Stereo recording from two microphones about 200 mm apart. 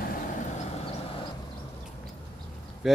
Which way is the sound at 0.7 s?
30° left (ahead or behind).